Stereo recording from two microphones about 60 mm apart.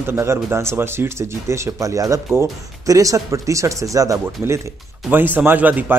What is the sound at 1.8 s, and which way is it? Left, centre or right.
Speech, right.